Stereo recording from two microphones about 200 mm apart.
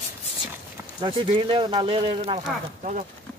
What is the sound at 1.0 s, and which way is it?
Speech, 25° right (ahead or behind).